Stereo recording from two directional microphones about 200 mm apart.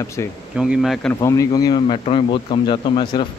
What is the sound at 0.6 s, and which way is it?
Speech, centre (ahead or behind).